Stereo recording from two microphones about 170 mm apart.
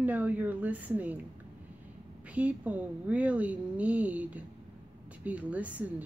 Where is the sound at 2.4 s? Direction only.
10° right (ahead or behind).